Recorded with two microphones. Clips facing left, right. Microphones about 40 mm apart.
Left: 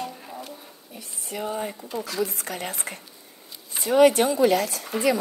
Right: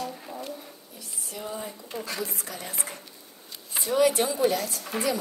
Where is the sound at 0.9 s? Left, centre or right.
Left.